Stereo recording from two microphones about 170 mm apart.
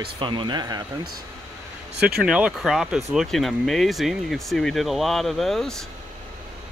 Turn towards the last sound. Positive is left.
turn(degrees=0)  # may be behind; listen again after turning